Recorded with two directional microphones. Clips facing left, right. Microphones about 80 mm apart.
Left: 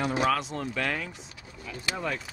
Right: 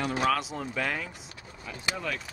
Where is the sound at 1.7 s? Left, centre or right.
Right.